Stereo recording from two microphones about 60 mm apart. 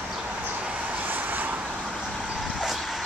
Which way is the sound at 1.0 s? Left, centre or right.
Right.